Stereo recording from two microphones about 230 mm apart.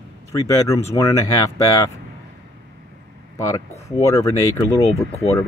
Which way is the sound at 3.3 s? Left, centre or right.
Centre.